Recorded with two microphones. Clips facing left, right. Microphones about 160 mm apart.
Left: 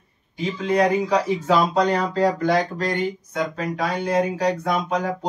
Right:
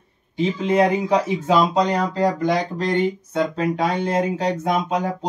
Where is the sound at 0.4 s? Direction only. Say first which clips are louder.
Right 2 dB; 25° right (ahead or behind).